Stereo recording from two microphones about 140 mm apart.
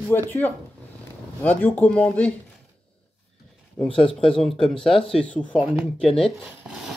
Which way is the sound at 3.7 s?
10° left (ahead or behind).